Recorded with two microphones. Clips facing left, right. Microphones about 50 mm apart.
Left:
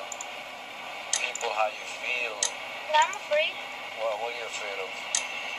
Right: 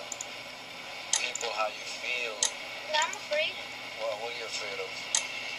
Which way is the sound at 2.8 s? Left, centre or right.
Centre.